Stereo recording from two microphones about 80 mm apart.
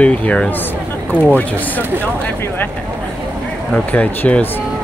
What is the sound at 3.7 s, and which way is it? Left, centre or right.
Speech, centre.